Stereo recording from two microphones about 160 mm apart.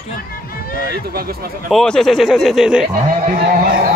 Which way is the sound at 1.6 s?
5° left (ahead or behind).